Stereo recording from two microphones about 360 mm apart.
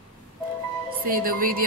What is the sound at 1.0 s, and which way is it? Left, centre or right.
Speech, right.